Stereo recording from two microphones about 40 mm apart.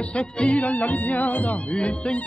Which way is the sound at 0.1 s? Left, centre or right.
Left.